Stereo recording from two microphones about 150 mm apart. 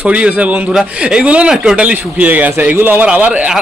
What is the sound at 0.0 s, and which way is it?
A man's voice, 10° right (ahead or behind).